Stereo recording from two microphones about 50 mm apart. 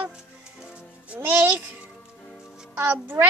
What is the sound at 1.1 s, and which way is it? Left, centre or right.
Speech, right.